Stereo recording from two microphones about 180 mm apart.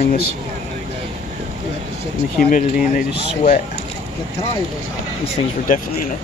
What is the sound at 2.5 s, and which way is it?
Speech, 45° left (ahead or behind).